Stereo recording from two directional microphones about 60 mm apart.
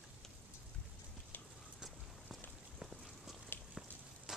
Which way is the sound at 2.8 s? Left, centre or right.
Centre.